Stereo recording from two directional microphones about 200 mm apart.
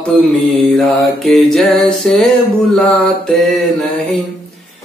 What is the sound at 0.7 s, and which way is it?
A man's voice, centre (ahead or behind).